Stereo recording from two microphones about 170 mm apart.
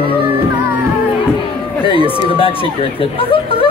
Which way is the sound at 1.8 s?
30° left (ahead or behind).